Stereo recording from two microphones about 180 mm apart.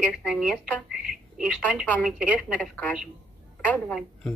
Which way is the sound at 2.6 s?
10° left (ahead or behind).